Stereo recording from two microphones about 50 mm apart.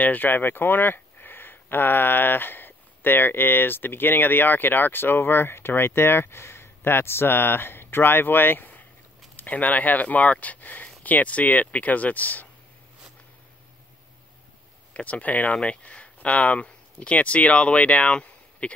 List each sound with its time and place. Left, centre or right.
0.0 s speech: left
15.0 s speech: left